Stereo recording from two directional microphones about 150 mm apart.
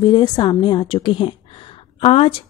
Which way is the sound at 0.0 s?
30° left (ahead or behind).